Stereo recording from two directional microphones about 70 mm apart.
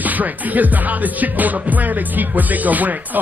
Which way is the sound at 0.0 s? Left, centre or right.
Right.